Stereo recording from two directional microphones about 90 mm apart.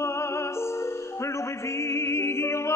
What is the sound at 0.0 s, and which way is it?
Music, 30° left (ahead or behind).